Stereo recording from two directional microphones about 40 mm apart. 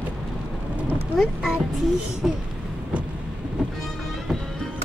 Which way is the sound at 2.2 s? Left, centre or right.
Centre.